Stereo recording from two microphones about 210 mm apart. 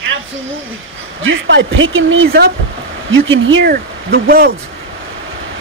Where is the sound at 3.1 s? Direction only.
65° right (ahead or behind).